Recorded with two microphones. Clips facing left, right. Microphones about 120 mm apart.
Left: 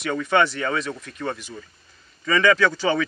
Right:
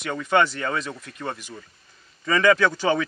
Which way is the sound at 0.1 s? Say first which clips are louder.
Even; 10° right (ahead or behind).